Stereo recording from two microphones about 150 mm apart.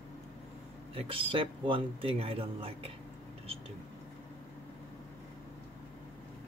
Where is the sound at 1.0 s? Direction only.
35° right (ahead or behind).